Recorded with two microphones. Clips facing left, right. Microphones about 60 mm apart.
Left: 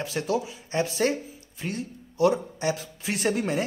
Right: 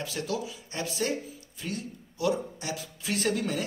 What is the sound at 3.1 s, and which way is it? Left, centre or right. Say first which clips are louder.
Speech: left 3 dB; left.